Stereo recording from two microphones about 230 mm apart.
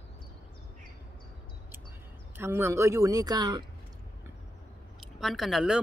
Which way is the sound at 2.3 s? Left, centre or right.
Centre.